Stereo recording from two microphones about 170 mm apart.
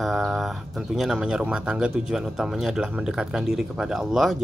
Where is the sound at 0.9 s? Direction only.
5° right (ahead or behind).